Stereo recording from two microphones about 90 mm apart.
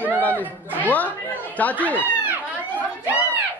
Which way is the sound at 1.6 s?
15° left (ahead or behind).